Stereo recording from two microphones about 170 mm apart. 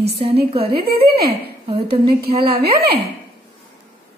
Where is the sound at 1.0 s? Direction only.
70° right (ahead or behind).